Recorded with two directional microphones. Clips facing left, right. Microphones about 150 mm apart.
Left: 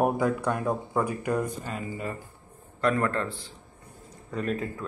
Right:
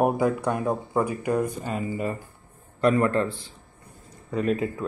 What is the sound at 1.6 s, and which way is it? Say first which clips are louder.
Speech: right 5 dB; 20° right (ahead or behind).